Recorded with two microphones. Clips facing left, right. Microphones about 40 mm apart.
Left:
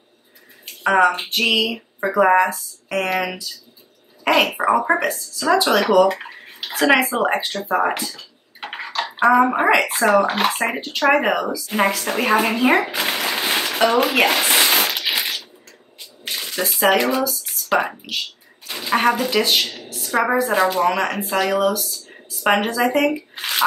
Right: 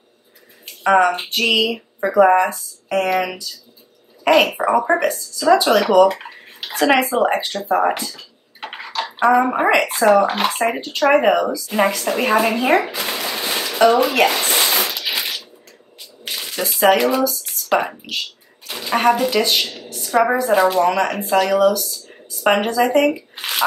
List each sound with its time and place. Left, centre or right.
0.8 s speech: centre
8.0 s bathtub: centre
9.1 s a woman's voice: centre
11.5 s a woman's voice: centre
13.3 s a sound: left
14.0 s a woman's voice: centre
14.3 s a sound: left
15.0 s bathtub: centre
16.5 s a woman's voice: centre
21.5 s a woman's voice: centre
22.4 s speech: centre